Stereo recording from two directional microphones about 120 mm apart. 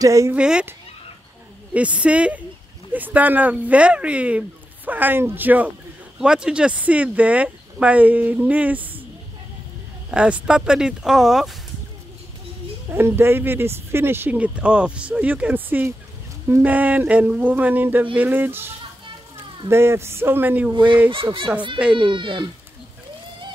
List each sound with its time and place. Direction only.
0.0 s speech: 25° right (ahead or behind)
0.3 s speech: 10° right (ahead or behind)
1.7 s speech: 10° right (ahead or behind)
10.1 s speech: 10° right (ahead or behind)
12.9 s speech: 20° right (ahead or behind)
19.7 s speech: 20° right (ahead or behind)
20.7 s speech: 40° right (ahead or behind)
21.7 s speech: 10° right (ahead or behind)
22.1 s speech: 40° right (ahead or behind)